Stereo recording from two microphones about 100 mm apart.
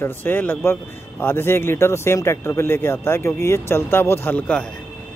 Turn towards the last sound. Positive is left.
turn(degrees=10)  # may be behind; listen again after turning